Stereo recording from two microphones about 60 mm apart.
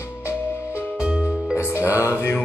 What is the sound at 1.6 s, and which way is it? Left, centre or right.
Music, left.